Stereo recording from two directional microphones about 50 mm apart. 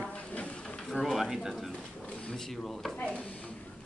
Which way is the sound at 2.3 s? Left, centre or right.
Centre.